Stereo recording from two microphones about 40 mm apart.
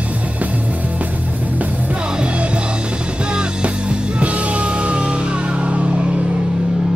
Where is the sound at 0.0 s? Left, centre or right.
Right.